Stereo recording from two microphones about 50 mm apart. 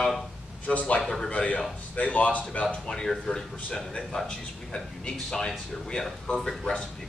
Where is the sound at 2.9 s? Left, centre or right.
Centre.